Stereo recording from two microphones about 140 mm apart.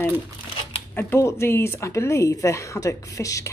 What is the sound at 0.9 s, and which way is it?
Speech, 15° left (ahead or behind).